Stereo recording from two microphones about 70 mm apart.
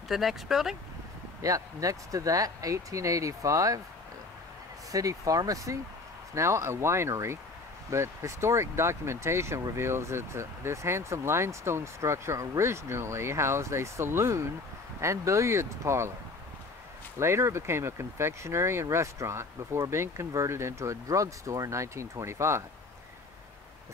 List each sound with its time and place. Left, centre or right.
0.1 s speech: centre
1.4 s speech: right
4.9 s speech: right
6.3 s speech: right
17.2 s speech: right